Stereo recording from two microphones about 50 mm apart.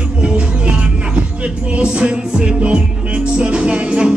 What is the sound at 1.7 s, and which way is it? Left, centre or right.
Music, right.